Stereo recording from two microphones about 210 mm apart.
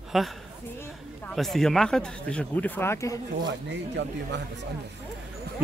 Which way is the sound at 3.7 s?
55° right (ahead or behind).